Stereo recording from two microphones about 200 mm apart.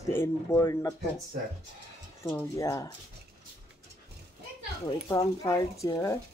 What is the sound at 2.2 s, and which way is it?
Speech, 15° left (ahead or behind).